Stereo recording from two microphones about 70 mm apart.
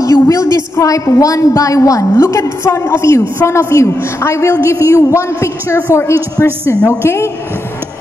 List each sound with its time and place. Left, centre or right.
0.0 s a woman's voice: left